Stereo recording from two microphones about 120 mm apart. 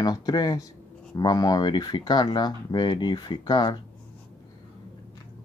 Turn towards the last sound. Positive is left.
turn(degrees=35)  # may be behind; listen again after turning